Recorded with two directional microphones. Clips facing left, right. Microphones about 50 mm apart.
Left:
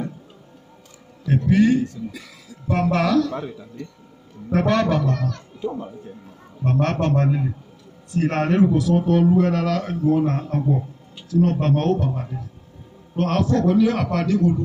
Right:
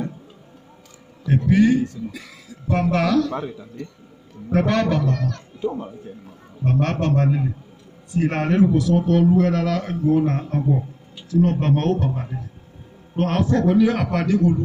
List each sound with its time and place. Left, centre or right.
1.2 s speech: centre
4.5 s speech: centre
6.6 s speech: centre
9.8 s speech: centre
13.1 s a man's voice: centre